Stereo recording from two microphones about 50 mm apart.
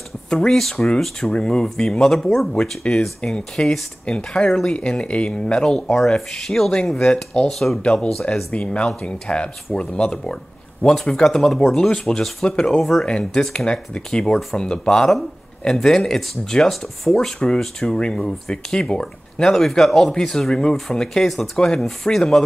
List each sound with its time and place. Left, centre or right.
0.3 s speech: centre
5.9 s speech: centre
7.8 s speech: left; by 13.0 s centre
13.0 s speech: centre
19.5 s speech: centre